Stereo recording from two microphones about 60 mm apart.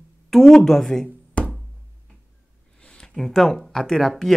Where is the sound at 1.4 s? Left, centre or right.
Centre.